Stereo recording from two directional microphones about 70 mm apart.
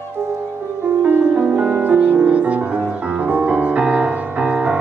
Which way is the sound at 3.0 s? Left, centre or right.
Centre.